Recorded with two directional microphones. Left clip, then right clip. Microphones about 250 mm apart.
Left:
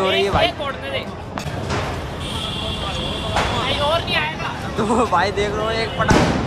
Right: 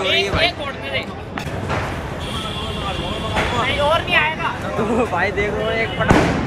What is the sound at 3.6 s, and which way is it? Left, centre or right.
Speech, centre.